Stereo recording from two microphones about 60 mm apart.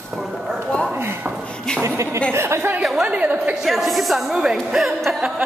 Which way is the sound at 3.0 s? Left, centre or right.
Centre.